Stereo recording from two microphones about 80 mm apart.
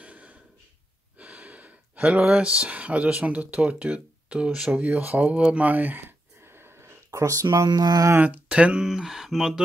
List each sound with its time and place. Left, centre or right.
0.0 s gasp: centre
1.1 s speech: centre; by 7.4 s right
7.6 s mantra: right
8.2 s speech: centre